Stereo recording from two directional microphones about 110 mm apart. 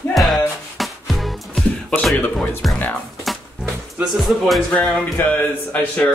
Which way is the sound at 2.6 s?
Centre (ahead or behind).